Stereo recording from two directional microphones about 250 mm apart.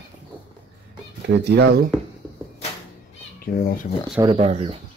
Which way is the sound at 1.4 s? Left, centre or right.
Right.